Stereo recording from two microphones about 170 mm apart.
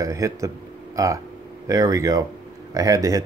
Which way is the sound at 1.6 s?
20° right (ahead or behind).